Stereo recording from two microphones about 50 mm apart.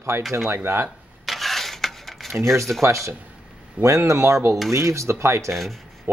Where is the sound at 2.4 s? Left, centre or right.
Right.